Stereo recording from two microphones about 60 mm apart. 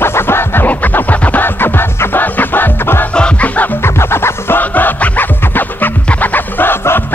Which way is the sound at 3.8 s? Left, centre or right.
Left.